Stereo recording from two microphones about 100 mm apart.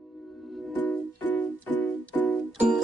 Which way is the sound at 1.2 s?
15° left (ahead or behind).